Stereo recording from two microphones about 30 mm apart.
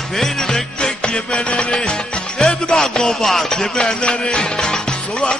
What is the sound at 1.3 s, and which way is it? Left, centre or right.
Music, left.